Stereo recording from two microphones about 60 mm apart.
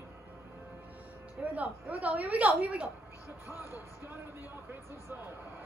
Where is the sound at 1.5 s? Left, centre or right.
Right.